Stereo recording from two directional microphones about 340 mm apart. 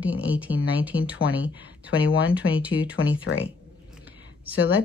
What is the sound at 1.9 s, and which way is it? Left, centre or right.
Speech, left.